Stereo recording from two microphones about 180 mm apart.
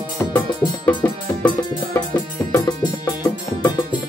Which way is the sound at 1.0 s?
25° left (ahead or behind).